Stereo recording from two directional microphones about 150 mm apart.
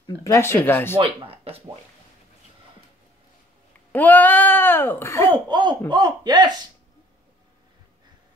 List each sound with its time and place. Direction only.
0.0 s speech: 20° left (ahead or behind)
0.9 s speech: 40° right (ahead or behind)
3.9 s speech: 10° left (ahead or behind)
5.5 s speech: 35° right (ahead or behind)